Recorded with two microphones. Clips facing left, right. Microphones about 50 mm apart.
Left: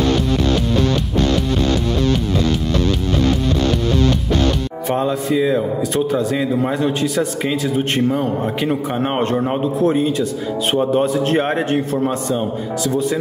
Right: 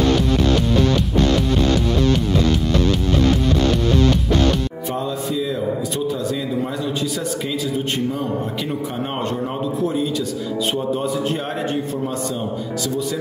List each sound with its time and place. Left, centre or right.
4.9 s a man's voice: left